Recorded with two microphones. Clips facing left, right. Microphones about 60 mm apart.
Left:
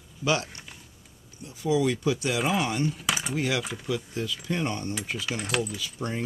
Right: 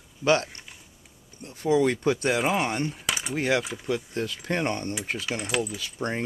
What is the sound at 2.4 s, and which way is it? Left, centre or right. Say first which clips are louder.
Speech: right 1 dB; centre.